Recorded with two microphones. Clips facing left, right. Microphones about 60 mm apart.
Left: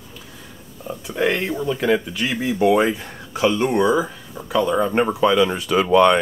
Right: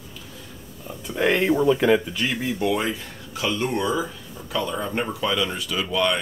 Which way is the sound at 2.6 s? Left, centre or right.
Left.